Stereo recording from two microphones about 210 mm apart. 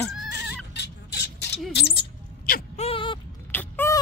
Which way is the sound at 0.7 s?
55° left (ahead or behind).